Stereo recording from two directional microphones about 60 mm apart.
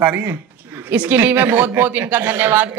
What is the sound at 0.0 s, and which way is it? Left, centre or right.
Speech, right.